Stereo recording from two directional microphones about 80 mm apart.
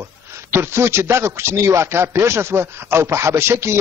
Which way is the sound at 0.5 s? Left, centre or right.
Right.